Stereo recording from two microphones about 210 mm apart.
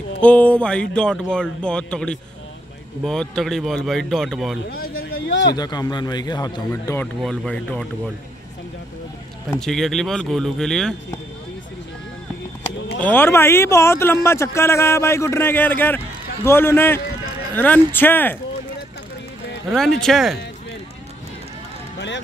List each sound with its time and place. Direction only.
0.2 s speech: 5° left (ahead or behind)
4.6 s speech: 45° left (ahead or behind)
5.1 s a sound: 60° left (ahead or behind)
5.6 s a man's voice: 20° left (ahead or behind)
9.6 s speech: centre (ahead or behind)
13.0 s speech: 10° left (ahead or behind)
20.0 s speech: centre (ahead or behind)
21.9 s music: 60° left (ahead or behind)